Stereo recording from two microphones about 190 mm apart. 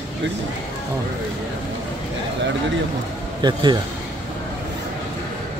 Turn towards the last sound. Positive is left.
turn(degrees=-25)  # may be behind; listen again after turning